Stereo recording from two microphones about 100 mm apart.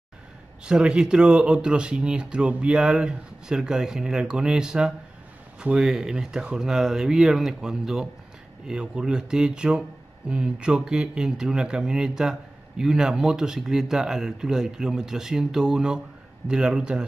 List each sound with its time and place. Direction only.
0.7 s speech: 10° right (ahead or behind)